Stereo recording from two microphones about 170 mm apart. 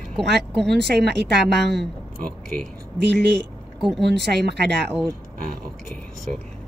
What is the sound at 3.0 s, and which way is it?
Speech, 80° right.